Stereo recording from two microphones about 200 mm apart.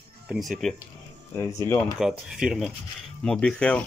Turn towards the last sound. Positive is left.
turn(degrees=5)  # may be behind; listen again after turning